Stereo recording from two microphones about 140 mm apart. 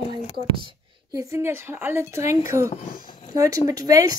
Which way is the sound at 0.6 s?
25° right (ahead or behind).